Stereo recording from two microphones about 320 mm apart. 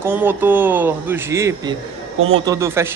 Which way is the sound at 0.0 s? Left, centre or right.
Centre.